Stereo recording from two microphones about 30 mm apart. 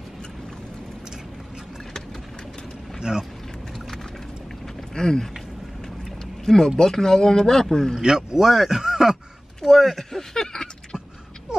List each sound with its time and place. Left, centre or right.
3.0 s speech: right
4.9 s speech: left
6.4 s speech: left
8.0 s speech: right
9.6 s speech: centre; by 11.0 s left